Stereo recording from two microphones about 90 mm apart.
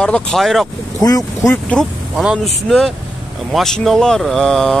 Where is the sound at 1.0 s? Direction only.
45° left (ahead or behind).